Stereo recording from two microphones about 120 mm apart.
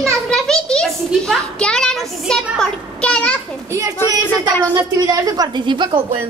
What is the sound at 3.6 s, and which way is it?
A woman's voice, 25° right (ahead or behind).